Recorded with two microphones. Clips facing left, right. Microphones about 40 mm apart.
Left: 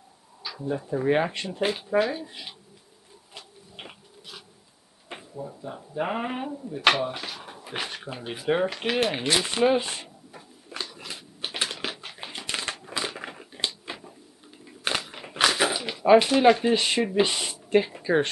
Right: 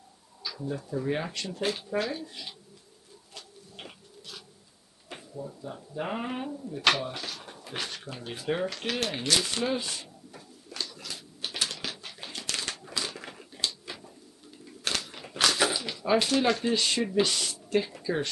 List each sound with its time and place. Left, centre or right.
0.4 s speech: centre
3.3 s printer: centre
5.1 s speech: left
10.3 s a sound: left
14.9 s speech: left